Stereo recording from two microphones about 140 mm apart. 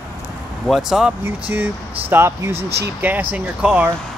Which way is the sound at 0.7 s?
5° right (ahead or behind).